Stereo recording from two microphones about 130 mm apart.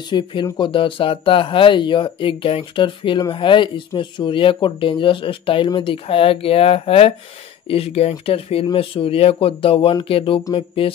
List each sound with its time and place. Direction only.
0.1 s speech: 35° left (ahead or behind)